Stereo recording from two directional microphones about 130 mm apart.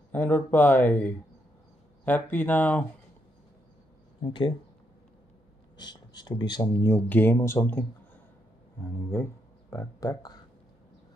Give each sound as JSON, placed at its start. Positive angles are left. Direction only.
{"t": 0.1, "sound": "speech", "side_deg": 15}
{"t": 4.2, "sound": "speech", "side_deg": 40}
{"t": 5.8, "sound": "speech", "side_deg": 35}
{"t": 6.7, "sound": "speech", "side_deg": 20}